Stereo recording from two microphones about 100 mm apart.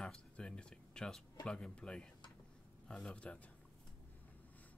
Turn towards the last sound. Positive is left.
turn(degrees=10)  # may be behind; listen again after turning